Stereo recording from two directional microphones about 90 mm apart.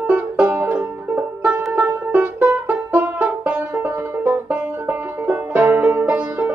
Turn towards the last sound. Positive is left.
turn(degrees=-15)  # may be behind; listen again after turning